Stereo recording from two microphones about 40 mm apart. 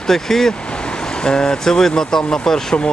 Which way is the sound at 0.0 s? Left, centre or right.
Centre.